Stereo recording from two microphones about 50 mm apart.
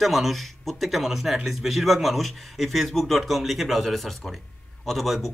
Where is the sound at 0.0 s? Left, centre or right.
Centre.